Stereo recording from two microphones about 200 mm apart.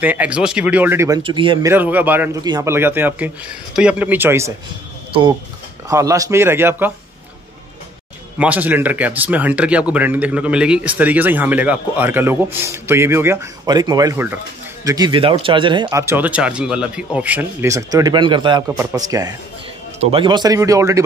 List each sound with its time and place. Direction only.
0.0 s a man's voice: 10° right (ahead or behind); by 1.7 s 25° right (ahead or behind)
1.7 s a man's voice: 10° right (ahead or behind)
5.9 s a man's voice: 15° right (ahead or behind)
8.4 s a man's voice: 10° right (ahead or behind)